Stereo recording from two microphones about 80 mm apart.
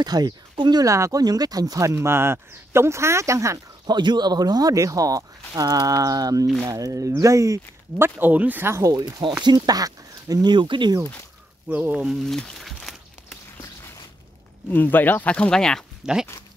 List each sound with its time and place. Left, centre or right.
0.0 s speech: right
0.8 s speech: right
1.2 s speech: right
2.0 s speech: right
3.8 s speech: right
8.0 s speech: right
8.8 s speech: right
10.5 s speech: right
11.7 s speech: centre
12.3 s a sound: centre
14.7 s speech: left; by 15.8 s centre
16.0 s speech: centre